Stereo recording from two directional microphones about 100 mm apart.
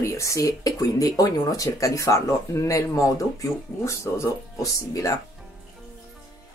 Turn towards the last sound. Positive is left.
turn(degrees=35)  # may be behind; listen again after turning